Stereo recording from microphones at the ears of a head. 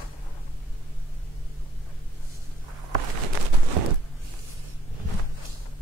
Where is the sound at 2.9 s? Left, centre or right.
Right.